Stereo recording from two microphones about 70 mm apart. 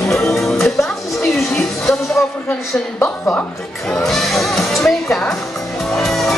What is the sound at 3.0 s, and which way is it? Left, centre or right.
Speech, left.